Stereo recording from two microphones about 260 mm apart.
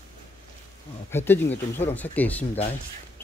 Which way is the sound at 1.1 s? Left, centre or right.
Centre.